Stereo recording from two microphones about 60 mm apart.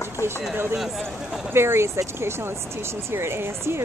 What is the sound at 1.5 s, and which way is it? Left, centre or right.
Speech, right.